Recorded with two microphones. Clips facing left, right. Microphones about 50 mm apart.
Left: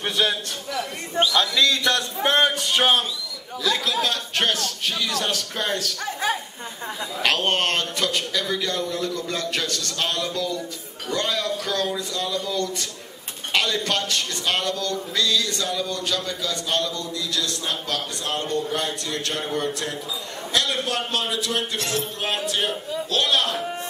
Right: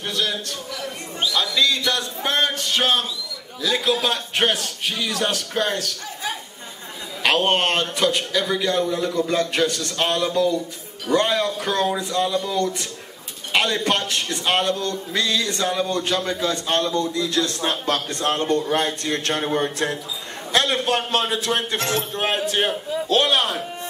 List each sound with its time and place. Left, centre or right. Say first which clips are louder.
0.0 s a man's voice: left 2 dB; left
2.4 s speech: left 1 dB; centre
3.6 s a man's voice: right 2 dB; centre
7.2 s a man's voice: right 3 dB; centre